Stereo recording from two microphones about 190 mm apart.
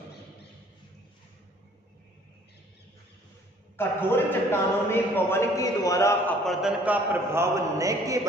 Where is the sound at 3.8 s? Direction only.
10° left (ahead or behind).